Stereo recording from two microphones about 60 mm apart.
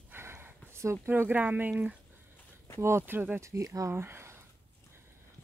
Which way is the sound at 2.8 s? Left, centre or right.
Right.